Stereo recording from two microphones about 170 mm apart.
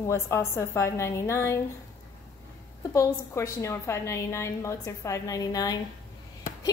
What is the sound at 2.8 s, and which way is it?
A woman's voice, 20° left (ahead or behind).